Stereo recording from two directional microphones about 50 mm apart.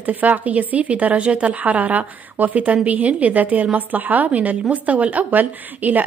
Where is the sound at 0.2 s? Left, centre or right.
Right.